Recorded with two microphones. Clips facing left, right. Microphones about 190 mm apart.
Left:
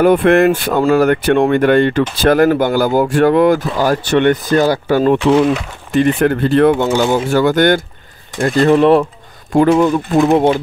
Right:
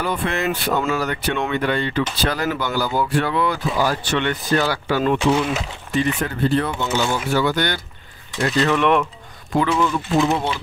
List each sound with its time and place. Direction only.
0.0 s speech: 55° left (ahead or behind)
5.9 s speech: 60° left (ahead or behind)
7.2 s speech: 50° left (ahead or behind)
8.6 s speech: 35° left (ahead or behind)
9.5 s speech: 50° left (ahead or behind)